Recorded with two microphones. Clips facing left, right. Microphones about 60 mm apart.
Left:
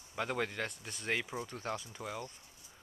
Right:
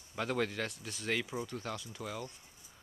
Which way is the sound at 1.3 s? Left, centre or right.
Left.